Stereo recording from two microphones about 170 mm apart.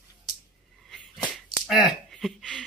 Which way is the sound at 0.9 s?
Centre (ahead or behind).